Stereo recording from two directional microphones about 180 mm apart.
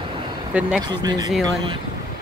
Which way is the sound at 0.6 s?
5° right (ahead or behind).